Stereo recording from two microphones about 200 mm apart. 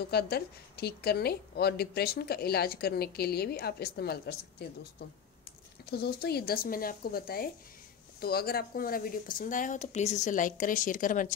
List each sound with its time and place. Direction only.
0.1 s a woman's voice: 50° left (ahead or behind)
5.9 s a woman's voice: 55° left (ahead or behind)